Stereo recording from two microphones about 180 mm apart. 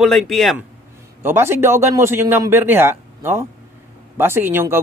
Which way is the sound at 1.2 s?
15° right (ahead or behind).